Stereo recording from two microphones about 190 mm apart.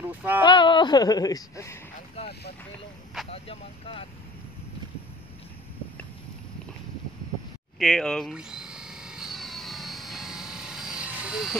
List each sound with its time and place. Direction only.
0.1 s speech: 10° right (ahead or behind)
0.4 s speech: 25° left (ahead or behind)
3.3 s speech: 30° left (ahead or behind)
7.8 s helicopter: 5° left (ahead or behind)